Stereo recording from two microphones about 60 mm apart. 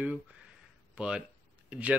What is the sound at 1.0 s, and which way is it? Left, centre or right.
Speech, centre.